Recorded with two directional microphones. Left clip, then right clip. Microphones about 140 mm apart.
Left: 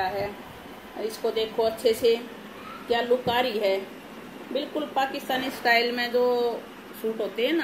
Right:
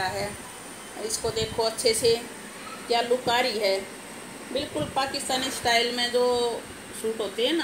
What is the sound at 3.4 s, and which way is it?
Speech, 15° left (ahead or behind).